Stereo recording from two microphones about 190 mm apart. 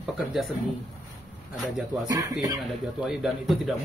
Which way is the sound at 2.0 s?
20° right (ahead or behind).